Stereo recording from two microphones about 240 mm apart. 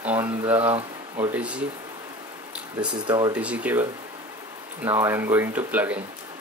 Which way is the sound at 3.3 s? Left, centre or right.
Centre.